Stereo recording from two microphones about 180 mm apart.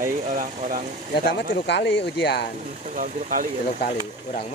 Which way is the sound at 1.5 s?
75° left (ahead or behind).